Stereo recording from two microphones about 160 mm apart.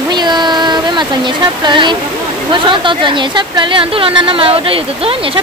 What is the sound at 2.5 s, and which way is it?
Speech, 30° right (ahead or behind).